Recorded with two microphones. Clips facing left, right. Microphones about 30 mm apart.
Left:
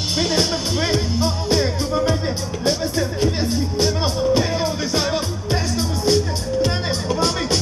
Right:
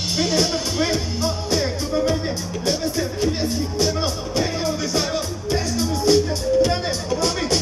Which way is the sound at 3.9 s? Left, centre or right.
Centre.